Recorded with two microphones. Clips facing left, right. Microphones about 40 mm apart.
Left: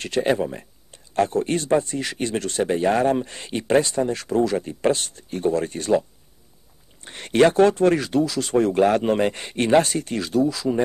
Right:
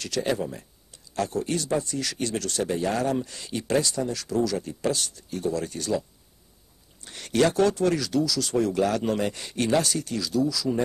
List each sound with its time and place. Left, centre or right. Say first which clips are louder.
0.0 s speech: left 6 dB; left